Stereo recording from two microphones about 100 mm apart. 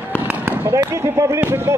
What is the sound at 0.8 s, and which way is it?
Speech, 30° right (ahead or behind).